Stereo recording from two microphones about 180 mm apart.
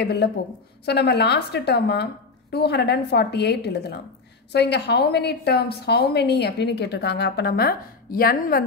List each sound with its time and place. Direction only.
0.0 s a woman's voice: 65° left (ahead or behind)